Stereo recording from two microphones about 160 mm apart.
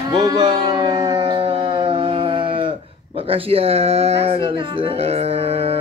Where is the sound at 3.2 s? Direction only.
35° right (ahead or behind).